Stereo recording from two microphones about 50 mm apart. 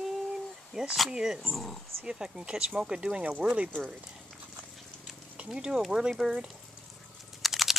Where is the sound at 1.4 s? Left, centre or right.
Centre.